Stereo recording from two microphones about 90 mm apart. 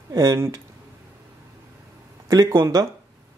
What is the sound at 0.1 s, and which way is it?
Speech, 40° right (ahead or behind).